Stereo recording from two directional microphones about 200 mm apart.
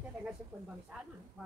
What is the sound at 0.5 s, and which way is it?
Speech, 15° right (ahead or behind).